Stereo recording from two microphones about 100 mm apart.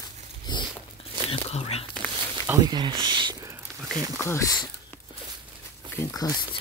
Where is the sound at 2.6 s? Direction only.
45° right (ahead or behind).